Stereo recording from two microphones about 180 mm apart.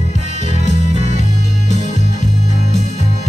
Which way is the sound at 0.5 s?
40° left (ahead or behind).